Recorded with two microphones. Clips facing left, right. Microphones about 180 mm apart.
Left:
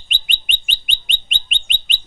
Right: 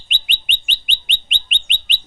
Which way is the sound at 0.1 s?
40° left (ahead or behind).